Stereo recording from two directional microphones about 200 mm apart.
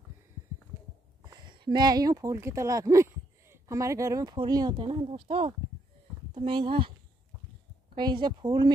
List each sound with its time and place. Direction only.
1.2 s speech: 20° right (ahead or behind)
7.9 s speech: 25° right (ahead or behind)